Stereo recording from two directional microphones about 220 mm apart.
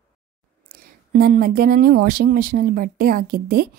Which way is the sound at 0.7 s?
40° right (ahead or behind).